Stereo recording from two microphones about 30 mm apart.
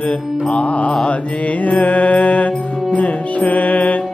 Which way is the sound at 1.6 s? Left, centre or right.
Left.